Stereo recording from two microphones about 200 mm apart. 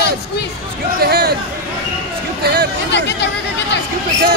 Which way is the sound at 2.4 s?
50° right (ahead or behind).